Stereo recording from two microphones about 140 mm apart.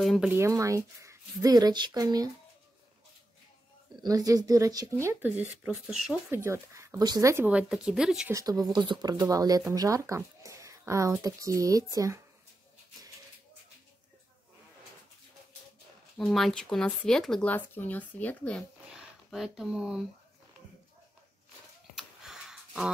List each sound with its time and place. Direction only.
0.0 s speech: centre (ahead or behind)
0.3 s speech: 20° right (ahead or behind)
4.0 s speech: 25° right (ahead or behind); by 6.1 s centre (ahead or behind)
6.3 s speech: 20° right (ahead or behind)
7.4 s speech: 10° right (ahead or behind)
8.3 s speech: 25° right (ahead or behind)
16.2 s speech: centre (ahead or behind)
18.9 s speech: 5° right (ahead or behind)
21.9 s a sound: 5° right (ahead or behind)